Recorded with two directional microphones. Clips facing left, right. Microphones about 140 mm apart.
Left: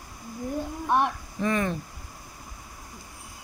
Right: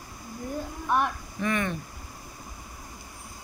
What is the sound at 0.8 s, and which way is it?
Speech, 25° left (ahead or behind).